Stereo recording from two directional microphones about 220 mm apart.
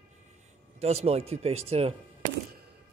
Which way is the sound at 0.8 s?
30° right (ahead or behind).